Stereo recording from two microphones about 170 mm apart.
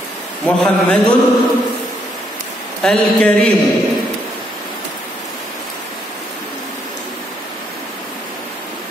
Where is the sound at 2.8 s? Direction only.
5° left (ahead or behind).